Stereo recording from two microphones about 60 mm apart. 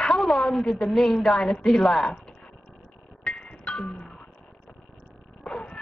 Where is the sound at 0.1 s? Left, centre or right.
Centre.